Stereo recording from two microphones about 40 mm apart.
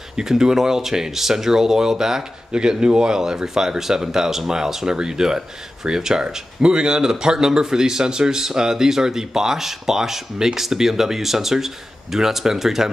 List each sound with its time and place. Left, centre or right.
0.1 s speech: centre